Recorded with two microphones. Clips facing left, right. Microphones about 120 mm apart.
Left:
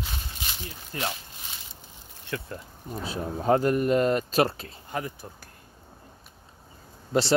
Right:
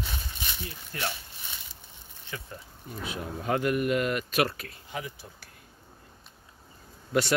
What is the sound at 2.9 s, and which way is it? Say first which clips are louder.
Speech: left 4 dB; 35° left (ahead or behind).